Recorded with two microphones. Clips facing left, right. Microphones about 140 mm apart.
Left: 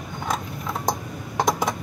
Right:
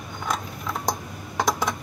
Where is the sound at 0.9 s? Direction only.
30° left (ahead or behind).